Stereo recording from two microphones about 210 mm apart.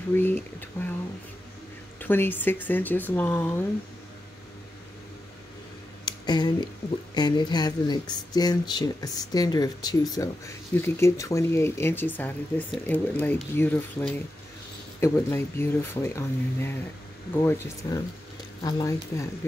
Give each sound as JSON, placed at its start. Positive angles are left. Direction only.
{"t": 0.1, "sound": "speech", "side_deg": 10}
{"t": 2.0, "sound": "speech", "side_deg": 10}
{"t": 6.0, "sound": "speech", "side_deg": 20}